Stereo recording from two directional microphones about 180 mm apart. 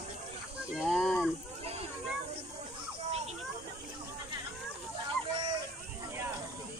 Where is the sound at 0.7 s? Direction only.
Centre (ahead or behind).